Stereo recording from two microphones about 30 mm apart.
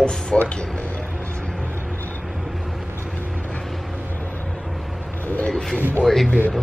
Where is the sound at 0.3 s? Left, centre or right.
Left.